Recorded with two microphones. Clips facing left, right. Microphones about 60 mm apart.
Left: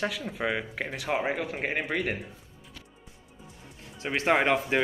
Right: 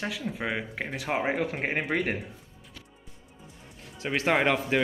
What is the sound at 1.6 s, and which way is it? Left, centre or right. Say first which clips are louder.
Speech: left 1 dB; right.